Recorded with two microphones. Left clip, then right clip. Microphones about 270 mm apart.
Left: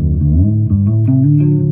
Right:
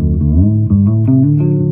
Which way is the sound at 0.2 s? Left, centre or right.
Centre.